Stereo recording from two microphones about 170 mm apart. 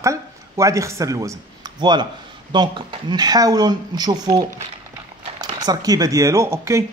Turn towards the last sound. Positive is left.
turn(degrees=-15)  # may be behind; listen again after turning